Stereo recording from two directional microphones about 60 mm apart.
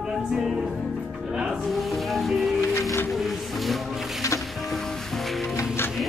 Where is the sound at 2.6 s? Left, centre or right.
Left.